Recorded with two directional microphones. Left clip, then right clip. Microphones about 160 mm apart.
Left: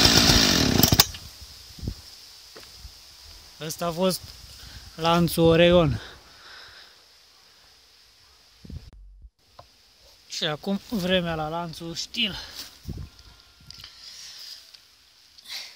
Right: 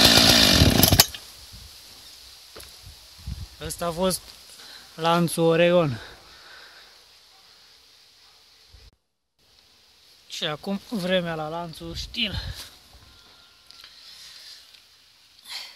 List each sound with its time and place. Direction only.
0.0 s chainsaw: 10° right (ahead or behind)
3.5 s speech: 20° left (ahead or behind)
4.9 s a sound: 5° left (ahead or behind)
10.3 s speech: 20° left (ahead or behind)
13.7 s music: 30° left (ahead or behind)
15.4 s sniff: centre (ahead or behind)